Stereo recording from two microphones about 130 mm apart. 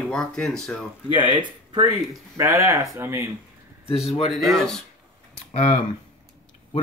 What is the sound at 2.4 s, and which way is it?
Speech, 20° right (ahead or behind).